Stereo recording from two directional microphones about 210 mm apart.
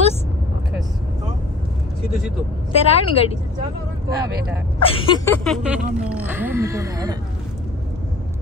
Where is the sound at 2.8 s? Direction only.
30° left (ahead or behind).